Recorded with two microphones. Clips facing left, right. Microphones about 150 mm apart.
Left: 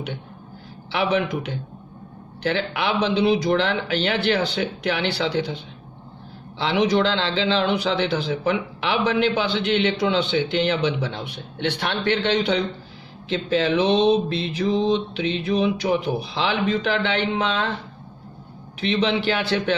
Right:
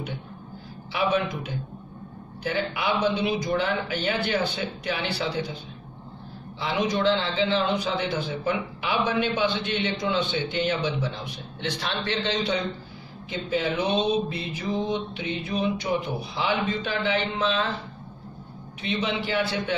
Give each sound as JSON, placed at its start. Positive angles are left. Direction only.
{"t": 0.9, "sound": "a man's voice", "side_deg": 75}
{"t": 6.6, "sound": "a man's voice", "side_deg": 80}
{"t": 13.3, "sound": "a sound", "side_deg": 90}
{"t": 18.8, "sound": "speech", "side_deg": 80}